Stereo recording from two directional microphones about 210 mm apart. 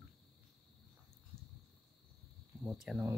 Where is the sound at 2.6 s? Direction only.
Centre (ahead or behind).